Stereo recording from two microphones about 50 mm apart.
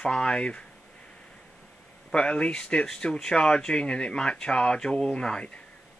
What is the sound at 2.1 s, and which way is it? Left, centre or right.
Speech, centre.